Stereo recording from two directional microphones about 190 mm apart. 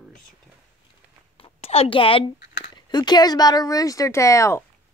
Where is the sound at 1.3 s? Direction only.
30° left (ahead or behind).